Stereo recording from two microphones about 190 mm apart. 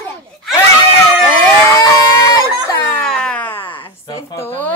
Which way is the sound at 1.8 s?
20° left (ahead or behind).